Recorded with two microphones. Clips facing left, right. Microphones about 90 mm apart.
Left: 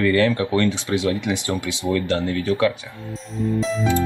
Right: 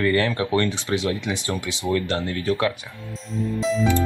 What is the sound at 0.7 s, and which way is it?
Speech, 20° left (ahead or behind).